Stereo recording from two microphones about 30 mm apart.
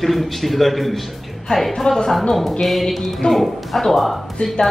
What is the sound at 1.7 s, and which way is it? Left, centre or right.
Speech, centre.